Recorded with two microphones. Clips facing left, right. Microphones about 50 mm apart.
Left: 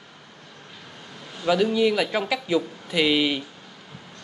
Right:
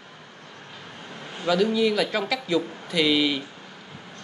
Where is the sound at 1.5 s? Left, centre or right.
Centre.